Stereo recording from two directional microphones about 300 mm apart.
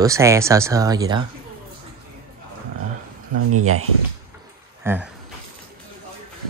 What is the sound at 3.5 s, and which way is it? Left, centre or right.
Speech, right.